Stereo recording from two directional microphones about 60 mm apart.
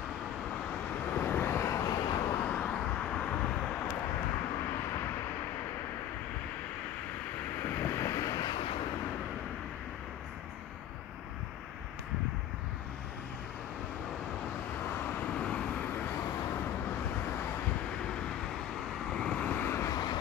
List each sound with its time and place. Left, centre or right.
1.1 s vehicle: left
1.4 s vehicle: left
1.8 s vehicle: left
2.4 s vehicle: left
3.0 s vehicle: centre
7.6 s boat: left
8.1 s boat: left
15.0 s vehicle: left
18.8 s vehicle: centre
19.3 s vehicle: left
19.6 s vehicle: left
19.9 s vehicle: left